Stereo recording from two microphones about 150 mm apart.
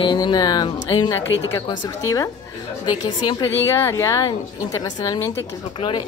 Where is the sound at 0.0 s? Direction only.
30° left (ahead or behind).